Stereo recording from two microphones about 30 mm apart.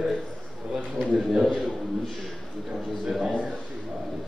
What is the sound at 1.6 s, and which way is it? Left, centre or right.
Speech, centre.